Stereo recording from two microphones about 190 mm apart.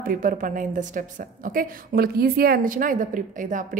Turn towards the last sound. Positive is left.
turn(degrees=-40)  # may be behind; listen again after turning